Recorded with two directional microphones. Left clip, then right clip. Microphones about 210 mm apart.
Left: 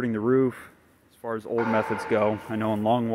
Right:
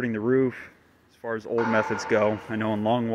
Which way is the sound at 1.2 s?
5° left (ahead or behind).